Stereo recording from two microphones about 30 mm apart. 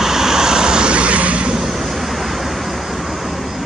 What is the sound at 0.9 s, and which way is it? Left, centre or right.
Vehicle, right.